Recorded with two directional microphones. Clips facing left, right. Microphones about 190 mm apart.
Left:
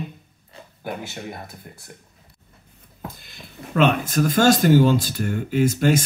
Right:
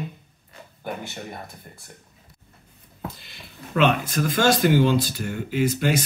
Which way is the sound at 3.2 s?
45° left (ahead or behind).